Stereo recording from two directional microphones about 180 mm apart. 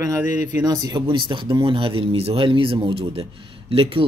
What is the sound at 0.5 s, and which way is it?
Speech, 20° right (ahead or behind).